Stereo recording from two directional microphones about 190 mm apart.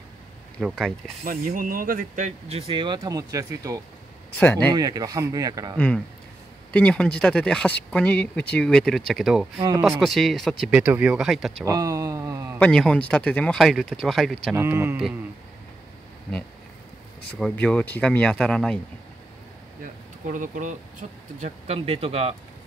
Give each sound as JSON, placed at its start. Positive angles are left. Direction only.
{"t": 0.6, "sound": "speech", "side_deg": 0}
{"t": 1.2, "sound": "speech", "side_deg": -45}
{"t": 4.4, "sound": "speech", "side_deg": 10}
{"t": 4.7, "sound": "speech", "side_deg": -20}
{"t": 5.8, "sound": "speech", "side_deg": 5}
{"t": 9.6, "sound": "speech", "side_deg": -20}
{"t": 9.8, "sound": "speech", "side_deg": 0}
{"t": 11.6, "sound": "a sound", "side_deg": -15}
{"t": 12.5, "sound": "speech", "side_deg": 5}
{"t": 14.5, "sound": "speech", "side_deg": -15}
{"t": 17.4, "sound": "speech", "side_deg": 5}
{"t": 19.8, "sound": "speech", "side_deg": -45}